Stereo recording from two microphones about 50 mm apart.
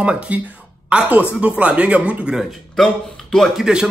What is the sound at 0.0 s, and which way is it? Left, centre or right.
A woman's voice, right.